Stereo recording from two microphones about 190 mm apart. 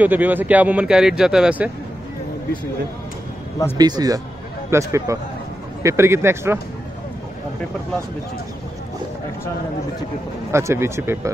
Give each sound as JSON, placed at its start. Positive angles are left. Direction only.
{"t": 0.0, "sound": "speech", "side_deg": -10}
{"t": 3.7, "sound": "a man's voice", "side_deg": -20}
{"t": 10.5, "sound": "speech", "side_deg": -15}